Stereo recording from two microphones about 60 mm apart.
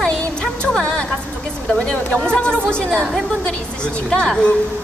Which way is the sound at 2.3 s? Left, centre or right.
Centre.